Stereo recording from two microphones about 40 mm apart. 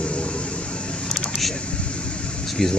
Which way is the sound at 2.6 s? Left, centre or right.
Centre.